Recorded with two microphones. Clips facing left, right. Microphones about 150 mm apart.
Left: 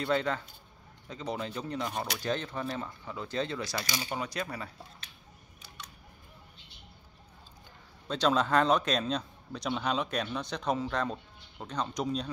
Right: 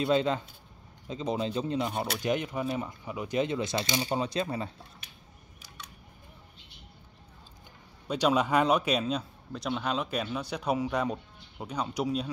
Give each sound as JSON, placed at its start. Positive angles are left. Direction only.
{"t": 0.0, "sound": "speech", "side_deg": -20}
{"t": 1.9, "sound": "speech", "side_deg": -5}
{"t": 8.1, "sound": "speech", "side_deg": -10}